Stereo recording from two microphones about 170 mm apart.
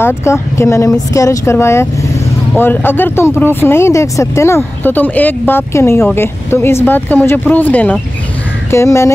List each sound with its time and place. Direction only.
0.0 s speech: 15° left (ahead or behind)